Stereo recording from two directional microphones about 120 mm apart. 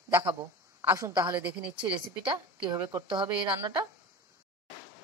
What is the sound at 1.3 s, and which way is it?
Speech, 10° right (ahead or behind).